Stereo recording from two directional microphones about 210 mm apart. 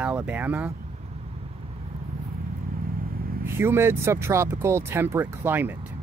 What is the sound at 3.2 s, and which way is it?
Vehicle, 45° right (ahead or behind).